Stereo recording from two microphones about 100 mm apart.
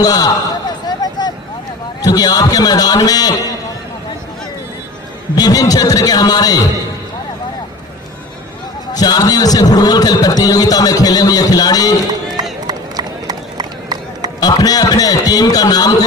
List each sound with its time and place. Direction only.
0.0 s a sound: 40° left (ahead or behind)
2.0 s a man's voice: 40° left (ahead or behind)
5.3 s a man's voice: 40° left (ahead or behind)
8.9 s a man's voice: 40° left (ahead or behind)
12.6 s run: 40° right (ahead or behind)
14.4 s a man's voice: 40° left (ahead or behind)